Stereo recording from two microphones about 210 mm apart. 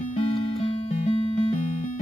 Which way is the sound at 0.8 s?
25° left (ahead or behind).